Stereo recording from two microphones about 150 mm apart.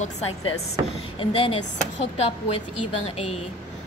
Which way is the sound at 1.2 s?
35° left (ahead or behind).